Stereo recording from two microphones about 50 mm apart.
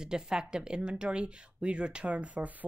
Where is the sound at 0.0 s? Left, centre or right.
Centre.